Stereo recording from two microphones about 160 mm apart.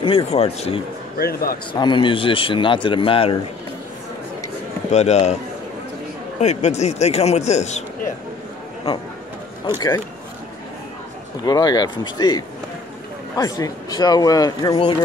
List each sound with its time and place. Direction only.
0.0 s speech: 40° left (ahead or behind)
1.1 s speech: 70° left (ahead or behind)
1.7 s speech: 30° left (ahead or behind)
4.9 s a man's voice: 45° left (ahead or behind)
6.4 s a man's voice: 45° left (ahead or behind)
9.8 s speech: 15° left (ahead or behind)
11.4 s speech: 25° left (ahead or behind)